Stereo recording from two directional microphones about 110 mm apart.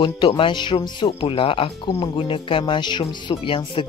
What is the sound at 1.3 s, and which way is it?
Speech, 55° left (ahead or behind).